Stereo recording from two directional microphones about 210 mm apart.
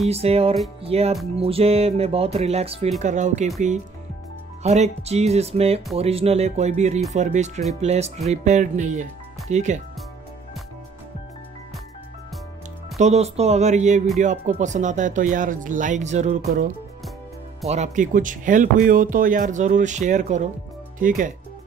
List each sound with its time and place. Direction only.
0.1 s speech: 30° right (ahead or behind)
4.6 s speech: 30° right (ahead or behind)
12.9 s speech: 30° right (ahead or behind)